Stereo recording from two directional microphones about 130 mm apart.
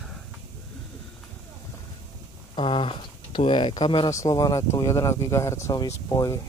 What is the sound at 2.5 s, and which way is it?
Speech, 40° left (ahead or behind).